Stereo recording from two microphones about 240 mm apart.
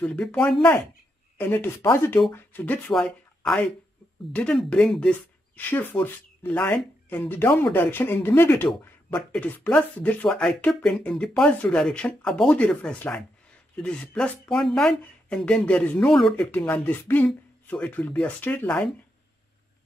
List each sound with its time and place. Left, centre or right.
0.0 s speech: centre